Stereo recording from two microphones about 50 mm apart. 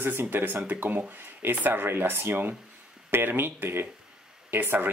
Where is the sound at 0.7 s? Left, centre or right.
Right.